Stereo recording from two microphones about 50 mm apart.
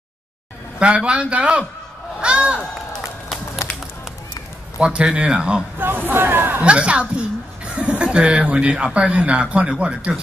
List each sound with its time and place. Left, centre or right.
0.7 s speech: right
3.6 s run: left
4.7 s speech: right
5.8 s speech: right
6.6 s speech: right
7.6 s chuckle: right
8.0 s speech: right